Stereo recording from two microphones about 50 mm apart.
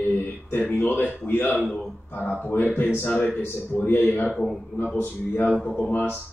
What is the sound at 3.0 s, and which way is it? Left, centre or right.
A man's voice, left.